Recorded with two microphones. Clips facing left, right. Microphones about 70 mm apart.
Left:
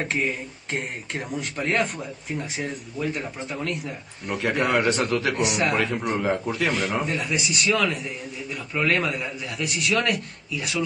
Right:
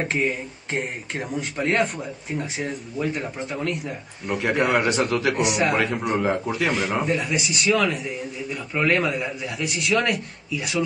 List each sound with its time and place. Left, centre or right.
0.0 s a man's voice: centre